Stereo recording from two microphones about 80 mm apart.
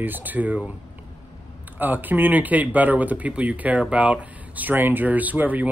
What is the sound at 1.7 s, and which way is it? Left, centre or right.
Speech, right.